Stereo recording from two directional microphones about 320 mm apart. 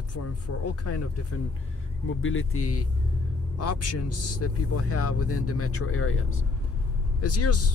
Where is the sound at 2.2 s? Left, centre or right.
Left.